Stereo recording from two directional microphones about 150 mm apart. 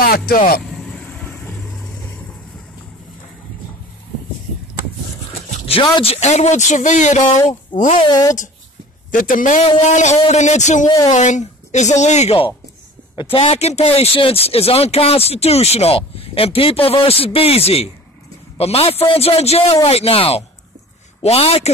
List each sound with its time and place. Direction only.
0.7 s vehicle: 5° left (ahead or behind)
5.7 s speech: 40° left (ahead or behind); by 8.0 s 55° left (ahead or behind)
8.1 s a woman's voice: 25° left (ahead or behind)
9.1 s a man's voice: 65° left (ahead or behind)
9.8 s speech: 50° left (ahead or behind)